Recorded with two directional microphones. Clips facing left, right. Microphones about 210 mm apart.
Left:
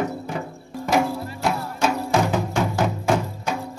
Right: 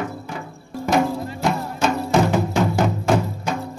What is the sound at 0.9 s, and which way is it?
Music, 10° left (ahead or behind).